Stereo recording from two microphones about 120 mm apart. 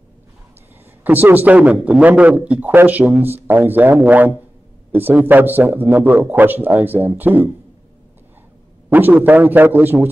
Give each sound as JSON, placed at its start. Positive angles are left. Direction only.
{"t": 1.0, "sound": "speech", "side_deg": -15}
{"t": 8.9, "sound": "speech", "side_deg": -15}